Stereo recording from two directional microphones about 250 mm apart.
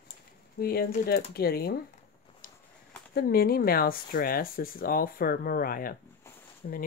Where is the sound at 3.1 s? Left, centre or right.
Left.